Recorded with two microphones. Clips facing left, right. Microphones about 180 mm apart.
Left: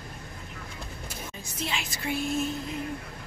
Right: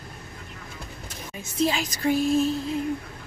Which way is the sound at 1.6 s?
40° right (ahead or behind).